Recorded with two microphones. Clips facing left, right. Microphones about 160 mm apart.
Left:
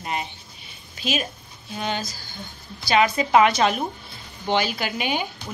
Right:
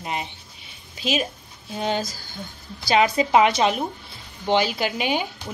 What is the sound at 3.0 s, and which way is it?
A woman's voice, 20° right (ahead or behind).